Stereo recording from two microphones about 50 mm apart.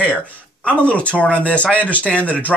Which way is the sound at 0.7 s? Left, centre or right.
Left.